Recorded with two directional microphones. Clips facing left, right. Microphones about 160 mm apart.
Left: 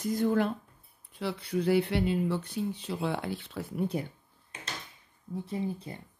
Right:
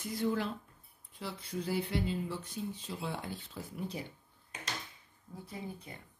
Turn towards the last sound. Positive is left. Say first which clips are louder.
# left 10 dB
turn(degrees=30)  # may be behind; listen again after turning